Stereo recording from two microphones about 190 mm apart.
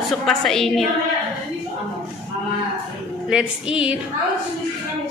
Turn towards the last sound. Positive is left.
turn(degrees=-5)  # may be behind; listen again after turning